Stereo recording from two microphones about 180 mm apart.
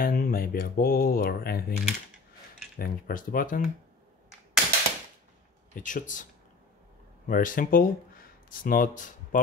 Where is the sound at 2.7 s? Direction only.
55° left (ahead or behind).